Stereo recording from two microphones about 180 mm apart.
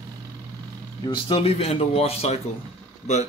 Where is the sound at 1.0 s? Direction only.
25° left (ahead or behind).